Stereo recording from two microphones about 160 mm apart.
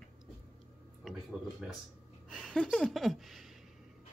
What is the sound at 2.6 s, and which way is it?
Speech, centre (ahead or behind).